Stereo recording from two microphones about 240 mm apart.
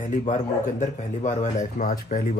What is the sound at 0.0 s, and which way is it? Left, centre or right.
Speech, left.